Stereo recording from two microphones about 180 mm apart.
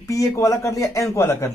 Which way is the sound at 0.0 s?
15° left (ahead or behind).